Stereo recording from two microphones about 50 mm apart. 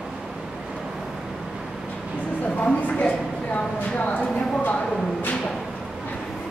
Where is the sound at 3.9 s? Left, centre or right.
Left.